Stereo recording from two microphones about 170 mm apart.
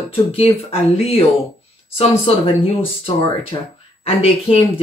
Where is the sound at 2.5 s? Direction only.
35° left (ahead or behind).